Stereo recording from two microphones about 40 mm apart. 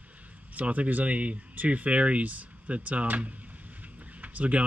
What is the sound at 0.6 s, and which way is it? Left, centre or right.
Speech, right.